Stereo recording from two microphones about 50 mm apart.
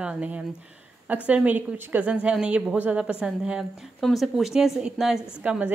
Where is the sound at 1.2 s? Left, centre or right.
Right.